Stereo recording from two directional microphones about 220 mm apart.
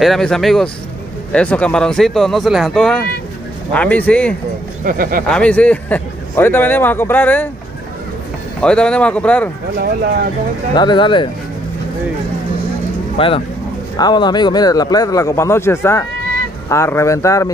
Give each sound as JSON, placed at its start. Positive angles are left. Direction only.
{"t": 0.0, "sound": "speech", "side_deg": 0}
{"t": 4.8, "sound": "speech", "side_deg": -40}
{"t": 5.3, "sound": "a man's voice", "side_deg": 5}
{"t": 8.5, "sound": "speech", "side_deg": 5}
{"t": 10.7, "sound": "speech", "side_deg": 20}
{"t": 13.2, "sound": "a man's voice", "side_deg": 25}